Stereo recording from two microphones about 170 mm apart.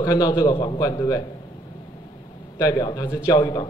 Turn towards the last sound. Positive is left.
turn(degrees=25)  # may be behind; listen again after turning